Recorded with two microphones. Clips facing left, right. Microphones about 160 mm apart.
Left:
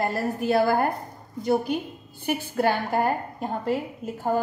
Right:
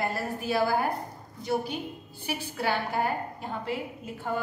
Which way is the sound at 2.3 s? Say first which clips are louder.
Left 6 dB; 50° left (ahead or behind).